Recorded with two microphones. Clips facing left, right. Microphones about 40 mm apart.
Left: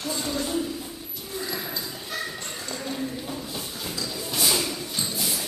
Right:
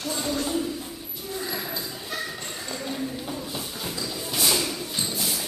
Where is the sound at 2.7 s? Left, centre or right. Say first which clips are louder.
Even; centre.